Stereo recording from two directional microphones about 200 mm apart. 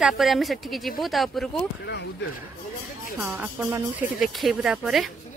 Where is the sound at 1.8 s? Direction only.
60° left (ahead or behind).